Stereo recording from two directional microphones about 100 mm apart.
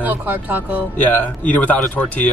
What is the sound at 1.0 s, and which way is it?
Speech, 15° left (ahead or behind).